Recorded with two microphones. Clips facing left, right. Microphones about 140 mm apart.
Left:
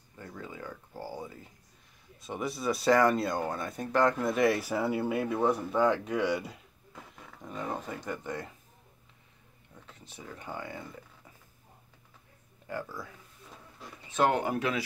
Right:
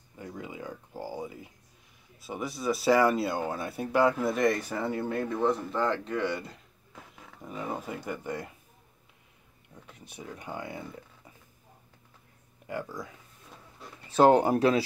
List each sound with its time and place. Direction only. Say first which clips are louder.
0.2 s a sound: right 3 dB; 15° right (ahead or behind)
2.1 s speech: left 1 dB; 5° right (ahead or behind)
7.2 s speech: right 1 dB; 5° right (ahead or behind)
9.8 s speech: right 3 dB; 10° right (ahead or behind)
12.6 s speech: right 2 dB; 15° right (ahead or behind)
14.1 s speech: right 7 dB; 35° right (ahead or behind)